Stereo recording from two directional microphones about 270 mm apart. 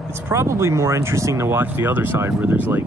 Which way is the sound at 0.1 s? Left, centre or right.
Centre.